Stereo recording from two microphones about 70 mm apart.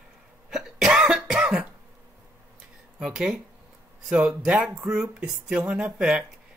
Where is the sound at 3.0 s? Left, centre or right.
Centre.